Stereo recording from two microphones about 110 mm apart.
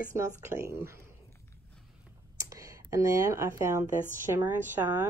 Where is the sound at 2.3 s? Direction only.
30° right (ahead or behind).